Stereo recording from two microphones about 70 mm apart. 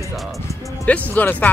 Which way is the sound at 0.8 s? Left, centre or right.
Left.